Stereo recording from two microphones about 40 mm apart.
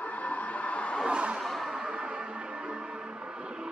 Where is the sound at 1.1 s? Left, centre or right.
Right.